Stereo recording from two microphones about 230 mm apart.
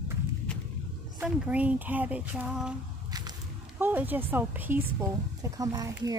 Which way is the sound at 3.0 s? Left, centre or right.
Centre.